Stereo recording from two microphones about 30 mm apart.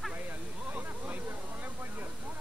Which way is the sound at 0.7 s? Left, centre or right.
Right.